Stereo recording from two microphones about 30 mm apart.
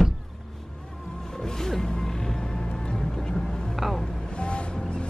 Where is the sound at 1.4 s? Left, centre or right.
Centre.